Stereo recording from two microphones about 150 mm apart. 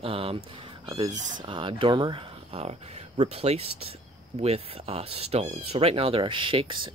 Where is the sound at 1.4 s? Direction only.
35° right (ahead or behind).